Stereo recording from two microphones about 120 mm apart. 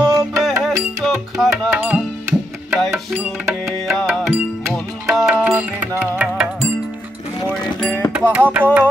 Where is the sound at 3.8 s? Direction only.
5° left (ahead or behind).